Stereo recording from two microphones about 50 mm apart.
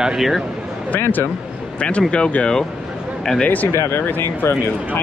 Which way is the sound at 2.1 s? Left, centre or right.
Left.